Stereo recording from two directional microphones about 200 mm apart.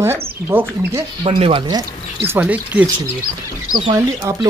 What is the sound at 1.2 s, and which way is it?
Speech, 25° right (ahead or behind).